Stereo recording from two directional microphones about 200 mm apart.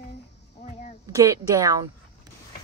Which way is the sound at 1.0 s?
15° right (ahead or behind).